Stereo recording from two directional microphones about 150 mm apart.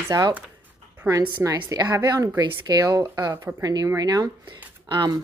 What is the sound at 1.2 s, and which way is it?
Speech, 30° right (ahead or behind).